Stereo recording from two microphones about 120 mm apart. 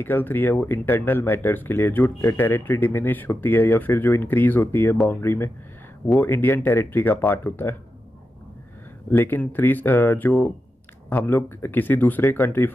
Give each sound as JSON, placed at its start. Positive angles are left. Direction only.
{"t": 0.0, "sound": "speech", "side_deg": 15}
{"t": 9.1, "sound": "speech", "side_deg": 15}